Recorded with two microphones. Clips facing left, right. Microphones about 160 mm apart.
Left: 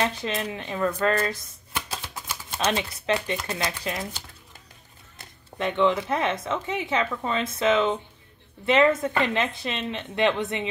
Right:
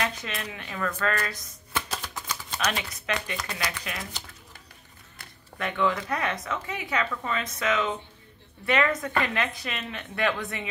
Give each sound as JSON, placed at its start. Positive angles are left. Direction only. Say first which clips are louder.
{"t": 0.0, "sound": "speech", "louder": "left 5 dB", "side_deg": 30}
{"t": 1.7, "sound": "typewriter", "louder": "right 1 dB", "side_deg": 15}
{"t": 2.5, "sound": "speech", "louder": "left 5 dB", "side_deg": 25}
{"t": 5.2, "sound": "speech", "louder": "left 5 dB", "side_deg": 25}